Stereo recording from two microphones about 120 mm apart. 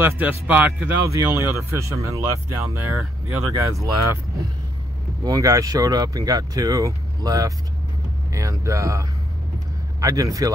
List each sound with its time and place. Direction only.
0.0 s speech: 15° right (ahead or behind)
1.0 s speech: 25° right (ahead or behind)
5.2 s speech: 30° right (ahead or behind)